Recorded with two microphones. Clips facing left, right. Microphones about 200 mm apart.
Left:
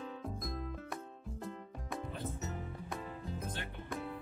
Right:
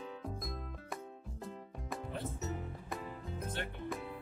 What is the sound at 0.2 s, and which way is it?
Music, centre (ahead or behind).